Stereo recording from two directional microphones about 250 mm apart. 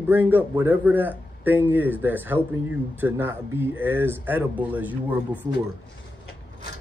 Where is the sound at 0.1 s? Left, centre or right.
Centre.